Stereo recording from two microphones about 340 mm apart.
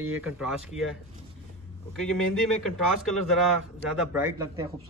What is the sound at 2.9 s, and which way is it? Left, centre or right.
A man's voice, centre.